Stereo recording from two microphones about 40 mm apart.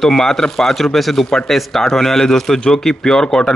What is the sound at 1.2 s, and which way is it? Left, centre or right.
Speech, centre.